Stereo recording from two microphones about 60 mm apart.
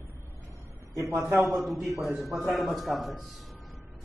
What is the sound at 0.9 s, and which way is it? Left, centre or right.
Speech, right.